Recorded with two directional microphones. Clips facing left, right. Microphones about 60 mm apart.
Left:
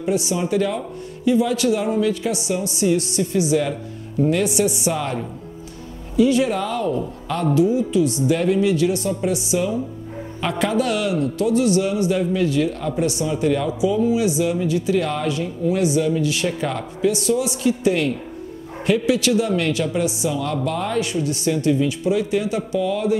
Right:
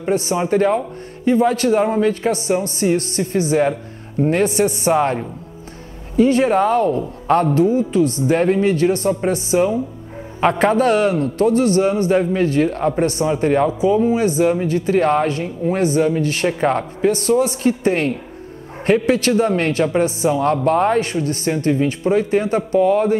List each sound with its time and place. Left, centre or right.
0.0 s a man's voice: right